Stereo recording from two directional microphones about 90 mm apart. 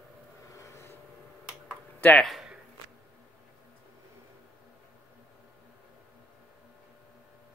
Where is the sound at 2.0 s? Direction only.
20° left (ahead or behind).